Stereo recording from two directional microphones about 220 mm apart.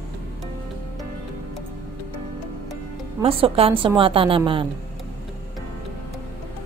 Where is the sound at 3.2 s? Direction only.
25° right (ahead or behind).